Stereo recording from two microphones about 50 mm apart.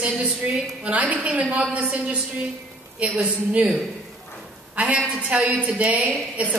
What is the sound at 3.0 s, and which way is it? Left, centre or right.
Speech, right.